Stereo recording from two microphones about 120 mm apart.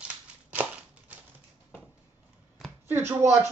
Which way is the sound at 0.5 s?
10° right (ahead or behind).